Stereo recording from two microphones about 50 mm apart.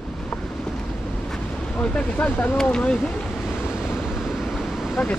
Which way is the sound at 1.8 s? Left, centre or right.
Left.